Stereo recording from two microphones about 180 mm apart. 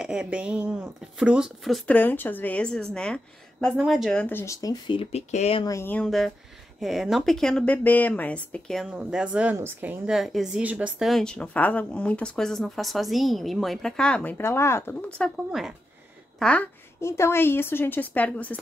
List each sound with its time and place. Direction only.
0.0 s a woman's voice: 5° right (ahead or behind); by 5.7 s 35° left (ahead or behind)
5.7 s a woman's voice: 10° left (ahead or behind)